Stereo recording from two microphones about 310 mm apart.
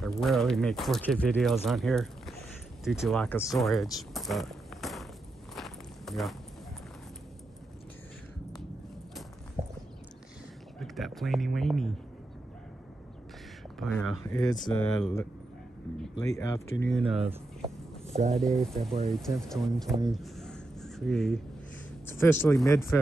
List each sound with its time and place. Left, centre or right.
0.0 s speech: centre
5.5 s walk: centre
10.8 s a sound: centre
13.7 s speech: centre
16.8 s speech: centre
18.1 s speech: right
18.4 s speech: centre
18.8 s speech: centre
20.1 s crow: centre
22.2 s speech: centre